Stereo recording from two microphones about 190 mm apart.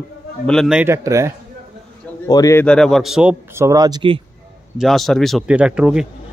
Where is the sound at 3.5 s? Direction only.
15° right (ahead or behind).